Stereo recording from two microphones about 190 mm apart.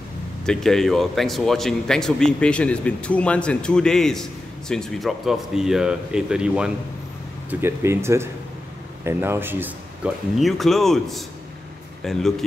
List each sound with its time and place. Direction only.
0.5 s a man's voice: centre (ahead or behind)